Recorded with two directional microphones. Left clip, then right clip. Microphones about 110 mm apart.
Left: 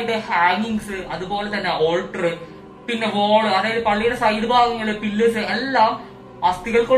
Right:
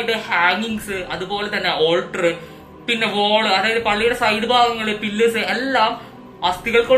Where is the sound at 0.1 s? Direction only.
20° right (ahead or behind).